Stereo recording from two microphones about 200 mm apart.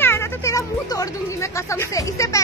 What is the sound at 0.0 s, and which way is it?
Speech, 10° left (ahead or behind).